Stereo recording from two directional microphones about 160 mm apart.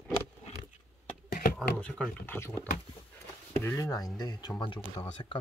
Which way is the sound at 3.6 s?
20° left (ahead or behind).